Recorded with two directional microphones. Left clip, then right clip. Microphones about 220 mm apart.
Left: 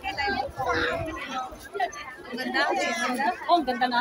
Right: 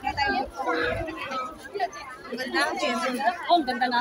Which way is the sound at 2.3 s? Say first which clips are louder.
Even; 10° right (ahead or behind).